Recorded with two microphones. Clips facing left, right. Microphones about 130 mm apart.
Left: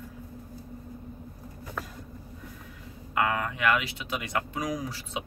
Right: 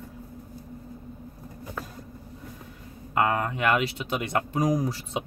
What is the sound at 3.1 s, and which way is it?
Speech, 35° right (ahead or behind).